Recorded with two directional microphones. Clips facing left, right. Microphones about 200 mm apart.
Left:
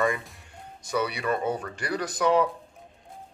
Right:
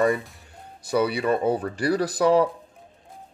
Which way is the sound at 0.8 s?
30° right (ahead or behind).